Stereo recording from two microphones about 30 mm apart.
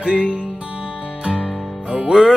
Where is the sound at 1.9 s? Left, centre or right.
Right.